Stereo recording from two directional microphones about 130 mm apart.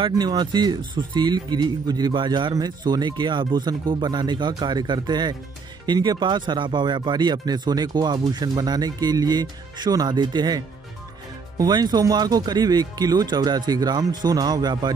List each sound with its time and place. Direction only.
0.1 s speech: 30° right (ahead or behind)